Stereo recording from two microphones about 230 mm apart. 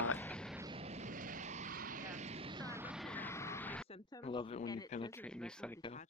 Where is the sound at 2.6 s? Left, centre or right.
Centre.